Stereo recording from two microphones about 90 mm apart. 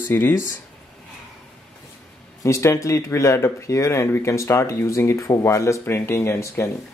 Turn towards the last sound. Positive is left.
turn(degrees=30)  # may be behind; listen again after turning